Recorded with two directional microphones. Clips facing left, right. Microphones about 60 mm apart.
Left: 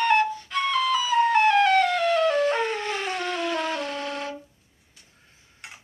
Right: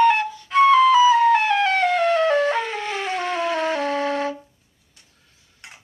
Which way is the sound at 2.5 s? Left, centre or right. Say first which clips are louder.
Right 1 dB; centre.